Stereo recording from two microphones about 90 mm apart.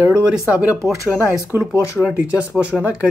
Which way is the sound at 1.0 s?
35° left (ahead or behind).